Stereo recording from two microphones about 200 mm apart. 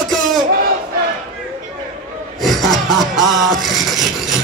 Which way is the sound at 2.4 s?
Centre (ahead or behind).